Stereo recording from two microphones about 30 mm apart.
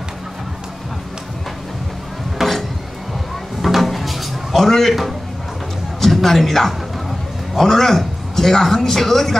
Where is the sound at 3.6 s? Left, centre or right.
Centre.